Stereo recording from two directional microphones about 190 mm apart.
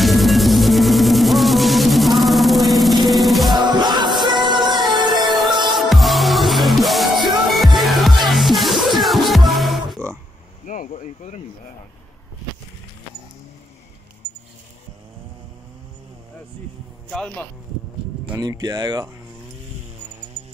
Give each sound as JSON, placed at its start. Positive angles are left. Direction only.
{"t": 0.0, "sound": "music", "side_deg": 0}
{"t": 3.5, "sound": "music", "side_deg": -25}
{"t": 5.2, "sound": "music", "side_deg": 0}
{"t": 10.7, "sound": "a sound", "side_deg": 40}
{"t": 17.1, "sound": "a sound", "side_deg": 5}
{"t": 18.4, "sound": "speech", "side_deg": -20}